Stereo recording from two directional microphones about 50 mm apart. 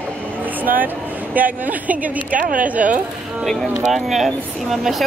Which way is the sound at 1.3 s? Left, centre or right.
Right.